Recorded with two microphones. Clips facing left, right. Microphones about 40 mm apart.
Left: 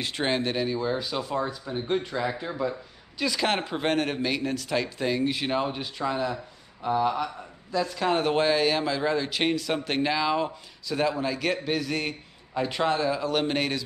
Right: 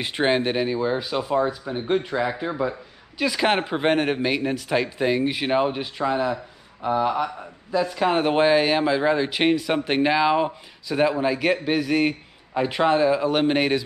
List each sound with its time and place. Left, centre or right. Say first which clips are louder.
0.0 s speech: right 5 dB; centre